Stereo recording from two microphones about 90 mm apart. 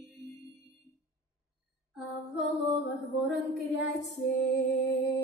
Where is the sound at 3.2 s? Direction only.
Centre (ahead or behind).